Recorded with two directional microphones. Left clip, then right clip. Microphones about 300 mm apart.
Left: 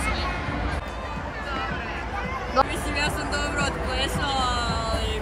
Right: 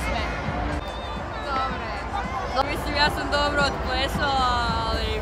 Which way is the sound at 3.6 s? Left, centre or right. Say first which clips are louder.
Right 2 dB; right.